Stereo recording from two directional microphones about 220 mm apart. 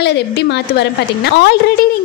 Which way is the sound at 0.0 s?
50° left (ahead or behind).